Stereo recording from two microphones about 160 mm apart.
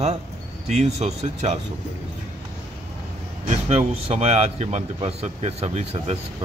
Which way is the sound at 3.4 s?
40° right (ahead or behind).